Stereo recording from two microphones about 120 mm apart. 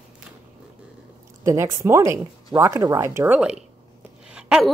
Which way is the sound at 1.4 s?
25° right (ahead or behind).